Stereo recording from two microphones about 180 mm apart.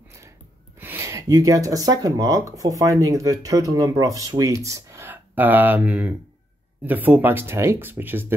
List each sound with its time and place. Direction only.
0.7 s speech: 10° right (ahead or behind)